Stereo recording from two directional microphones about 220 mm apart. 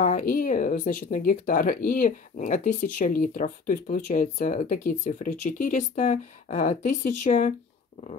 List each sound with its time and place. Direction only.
0.0 s speech: 35° left (ahead or behind)